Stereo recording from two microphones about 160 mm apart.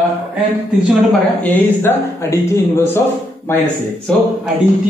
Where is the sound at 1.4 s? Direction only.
10° left (ahead or behind).